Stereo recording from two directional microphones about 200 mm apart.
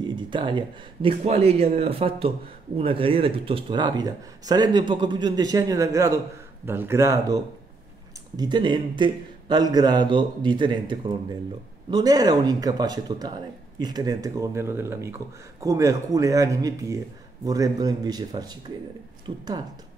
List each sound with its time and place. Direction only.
0.0 s speech: 25° right (ahead or behind)